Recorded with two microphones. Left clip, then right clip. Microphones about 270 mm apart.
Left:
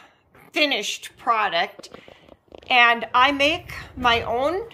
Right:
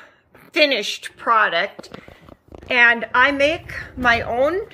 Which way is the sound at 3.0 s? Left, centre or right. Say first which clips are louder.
Right 2 dB; centre.